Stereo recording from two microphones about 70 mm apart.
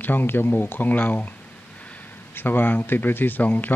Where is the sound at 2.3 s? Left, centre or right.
Left.